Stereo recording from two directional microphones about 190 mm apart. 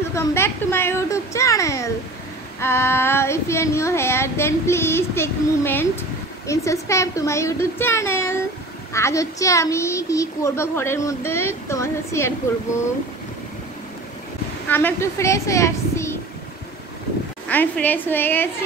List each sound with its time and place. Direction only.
0.1 s a child's voice: 15° left (ahead or behind)
14.7 s a woman's voice: 10° left (ahead or behind)
17.5 s a child's voice: 10° left (ahead or behind)